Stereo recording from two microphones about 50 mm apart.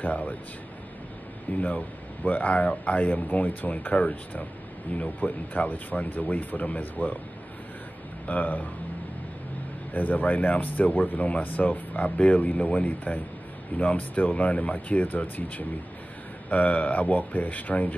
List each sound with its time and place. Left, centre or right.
0.0 s speech: left
1.6 s speech: left
8.3 s speech: left
9.9 s speech: left